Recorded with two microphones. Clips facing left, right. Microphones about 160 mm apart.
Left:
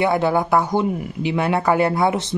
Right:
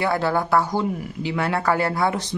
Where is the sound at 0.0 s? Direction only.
20° left (ahead or behind).